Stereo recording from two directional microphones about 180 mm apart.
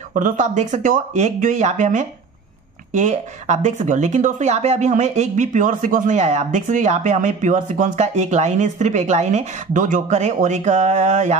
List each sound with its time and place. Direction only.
0.1 s speech: 45° right (ahead or behind)